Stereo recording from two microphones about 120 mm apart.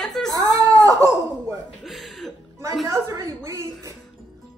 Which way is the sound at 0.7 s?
30° right (ahead or behind).